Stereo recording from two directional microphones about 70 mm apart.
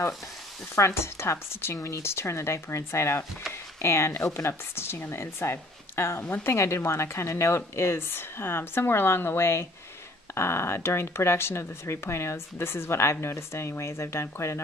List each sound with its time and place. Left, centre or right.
0.7 s speech: left
6.5 s speech: left